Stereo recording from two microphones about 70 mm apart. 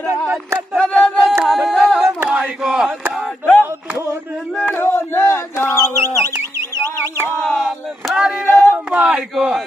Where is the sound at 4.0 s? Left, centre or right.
Right.